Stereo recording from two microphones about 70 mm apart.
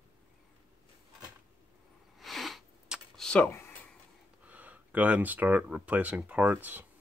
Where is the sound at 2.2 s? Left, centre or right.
Centre.